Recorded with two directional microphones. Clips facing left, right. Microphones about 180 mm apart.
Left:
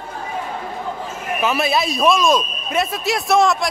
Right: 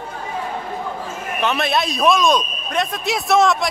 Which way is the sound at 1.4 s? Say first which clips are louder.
Left 1 dB; centre (ahead or behind).